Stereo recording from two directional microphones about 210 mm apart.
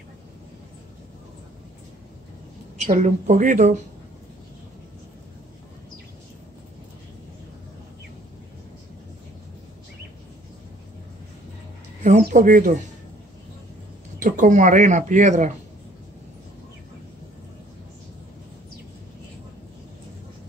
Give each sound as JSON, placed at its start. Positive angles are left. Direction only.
{"t": 2.8, "sound": "speech", "side_deg": -35}
{"t": 12.0, "sound": "speech", "side_deg": -35}
{"t": 14.2, "sound": "speech", "side_deg": -40}